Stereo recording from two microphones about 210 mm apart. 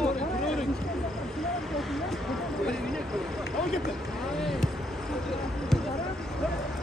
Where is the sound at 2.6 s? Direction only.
5° left (ahead or behind).